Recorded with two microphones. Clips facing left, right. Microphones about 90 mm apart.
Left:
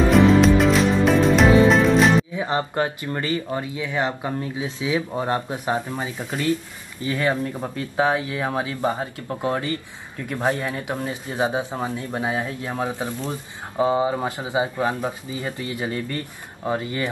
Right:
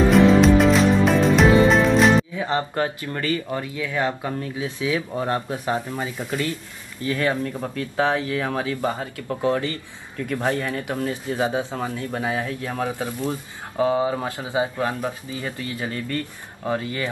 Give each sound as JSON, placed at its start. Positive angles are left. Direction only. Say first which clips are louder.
{"t": 0.1, "sound": "music", "louder": "even", "side_deg": 0}
{"t": 2.3, "sound": "speech", "louder": "left 1 dB", "side_deg": 20}